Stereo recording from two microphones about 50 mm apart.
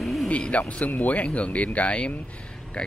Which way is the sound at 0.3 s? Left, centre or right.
Left.